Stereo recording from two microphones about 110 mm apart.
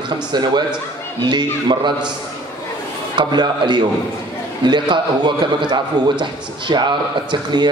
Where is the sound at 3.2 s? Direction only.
40° right (ahead or behind).